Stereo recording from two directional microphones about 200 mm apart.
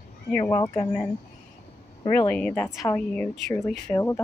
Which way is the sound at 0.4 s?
20° left (ahead or behind).